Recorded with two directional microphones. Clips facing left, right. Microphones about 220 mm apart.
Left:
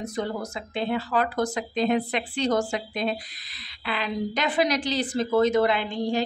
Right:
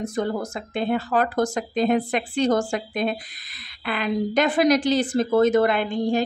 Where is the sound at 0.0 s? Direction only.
50° right (ahead or behind).